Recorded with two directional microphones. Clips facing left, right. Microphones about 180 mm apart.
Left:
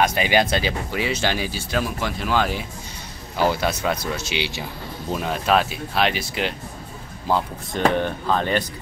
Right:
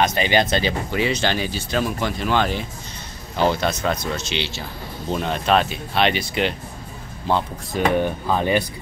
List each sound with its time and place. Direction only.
0.0 s speech: 10° left (ahead or behind)
7.9 s speech: 10° right (ahead or behind)